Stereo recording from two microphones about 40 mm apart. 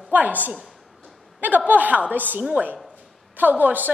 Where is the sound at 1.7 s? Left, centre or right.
Right.